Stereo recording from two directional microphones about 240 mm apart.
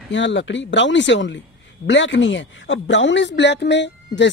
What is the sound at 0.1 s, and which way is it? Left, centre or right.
Speech, left.